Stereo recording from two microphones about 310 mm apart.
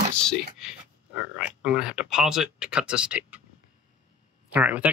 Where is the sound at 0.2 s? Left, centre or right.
Centre.